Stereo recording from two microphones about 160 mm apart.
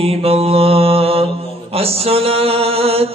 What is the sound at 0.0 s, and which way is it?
Mantra, 40° right (ahead or behind).